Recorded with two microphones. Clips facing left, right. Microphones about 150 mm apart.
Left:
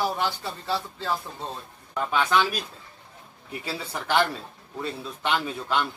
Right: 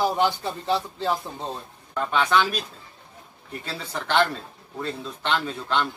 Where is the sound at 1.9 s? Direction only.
5° left (ahead or behind).